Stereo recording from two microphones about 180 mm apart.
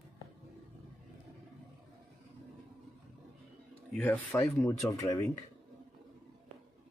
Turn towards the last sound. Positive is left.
turn(degrees=15)  # may be behind; listen again after turning